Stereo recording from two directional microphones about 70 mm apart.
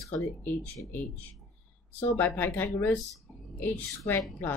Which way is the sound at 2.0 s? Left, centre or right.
Left.